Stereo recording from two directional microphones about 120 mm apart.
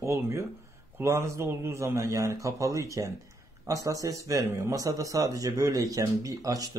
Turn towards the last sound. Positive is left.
turn(degrees=-30)  # may be behind; listen again after turning